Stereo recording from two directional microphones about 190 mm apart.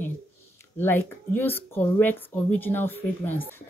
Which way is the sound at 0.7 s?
10° left (ahead or behind).